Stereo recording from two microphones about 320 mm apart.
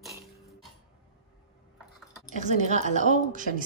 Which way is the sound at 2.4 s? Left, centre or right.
Right.